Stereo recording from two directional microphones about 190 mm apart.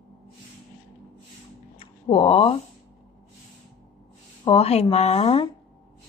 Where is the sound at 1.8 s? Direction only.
30° left (ahead or behind).